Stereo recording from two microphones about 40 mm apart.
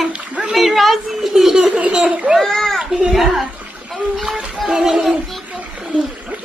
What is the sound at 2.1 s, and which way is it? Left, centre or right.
Children playing, right.